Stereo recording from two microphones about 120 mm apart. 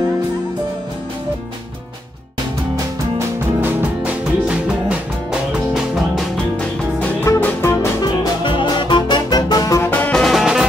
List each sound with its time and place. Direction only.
3.6 s music: 10° right (ahead or behind)
7.2 s music: 20° left (ahead or behind)
7.7 s music: 30° left (ahead or behind)
8.5 s music: 40° left (ahead or behind)
9.8 s music: 15° left (ahead or behind)
10.2 s music: centre (ahead or behind)